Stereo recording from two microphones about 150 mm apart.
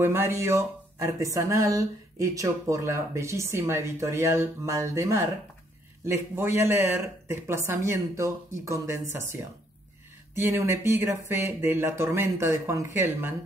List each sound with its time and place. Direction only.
0.0 s speech: 15° right (ahead or behind)
10.4 s speech: 15° right (ahead or behind)